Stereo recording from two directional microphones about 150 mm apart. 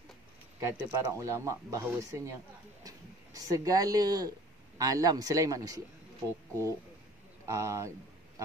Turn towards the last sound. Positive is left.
turn(degrees=-20)  # may be behind; listen again after turning